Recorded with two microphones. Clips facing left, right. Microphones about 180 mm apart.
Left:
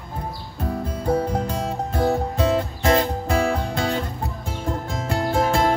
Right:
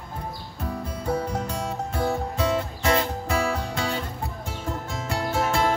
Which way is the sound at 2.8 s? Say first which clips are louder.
Left 4 dB; 40° left (ahead or behind).